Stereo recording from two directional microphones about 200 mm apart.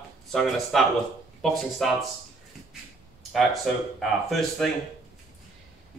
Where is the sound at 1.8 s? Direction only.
Centre (ahead or behind).